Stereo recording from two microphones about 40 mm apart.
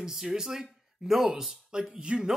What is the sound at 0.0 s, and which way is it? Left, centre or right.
Speech, centre.